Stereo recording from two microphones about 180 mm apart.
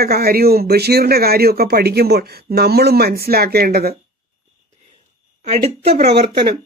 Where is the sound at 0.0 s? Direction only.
60° right (ahead or behind).